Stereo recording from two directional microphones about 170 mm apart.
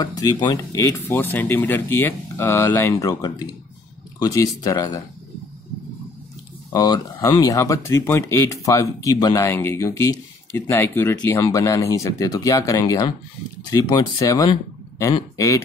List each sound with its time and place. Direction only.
0.0 s speech: 20° left (ahead or behind)
6.7 s speech: 20° left (ahead or behind)